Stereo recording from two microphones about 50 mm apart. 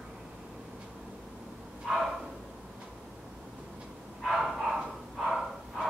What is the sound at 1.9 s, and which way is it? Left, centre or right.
Bow-wow, centre.